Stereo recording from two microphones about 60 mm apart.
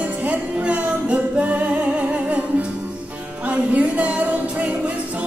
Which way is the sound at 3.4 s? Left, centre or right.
Right.